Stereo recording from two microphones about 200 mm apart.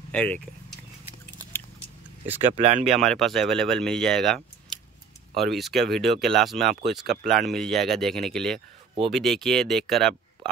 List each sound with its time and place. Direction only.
0.1 s speech: 5° left (ahead or behind)
1.5 s a sound: 10° left (ahead or behind)
2.5 s speech: 30° right (ahead or behind)
2.8 s speech: centre (ahead or behind)